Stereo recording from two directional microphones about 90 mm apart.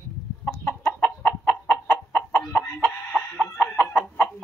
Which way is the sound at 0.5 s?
30° left (ahead or behind).